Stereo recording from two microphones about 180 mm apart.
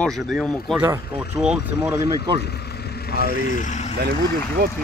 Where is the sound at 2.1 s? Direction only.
25° right (ahead or behind).